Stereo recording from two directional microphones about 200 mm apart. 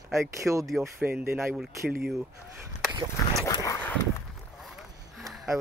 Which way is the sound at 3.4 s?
15° left (ahead or behind).